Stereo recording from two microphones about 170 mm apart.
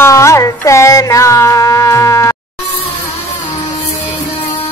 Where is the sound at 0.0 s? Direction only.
15° left (ahead or behind).